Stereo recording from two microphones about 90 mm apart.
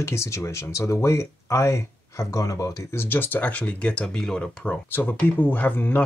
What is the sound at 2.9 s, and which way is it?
Speech, 20° left (ahead or behind).